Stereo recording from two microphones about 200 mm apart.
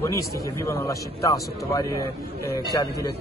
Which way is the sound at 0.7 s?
15° left (ahead or behind).